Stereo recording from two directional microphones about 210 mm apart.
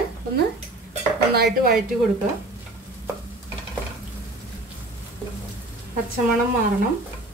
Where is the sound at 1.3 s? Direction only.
50° right (ahead or behind).